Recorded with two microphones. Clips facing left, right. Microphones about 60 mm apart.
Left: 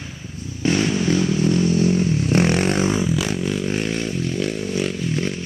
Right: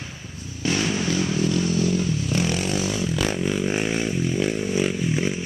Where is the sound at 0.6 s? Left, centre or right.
Left.